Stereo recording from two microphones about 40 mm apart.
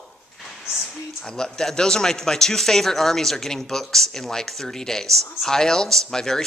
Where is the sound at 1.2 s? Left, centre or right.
Centre.